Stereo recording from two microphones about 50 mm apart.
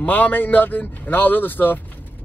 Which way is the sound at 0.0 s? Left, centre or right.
Left.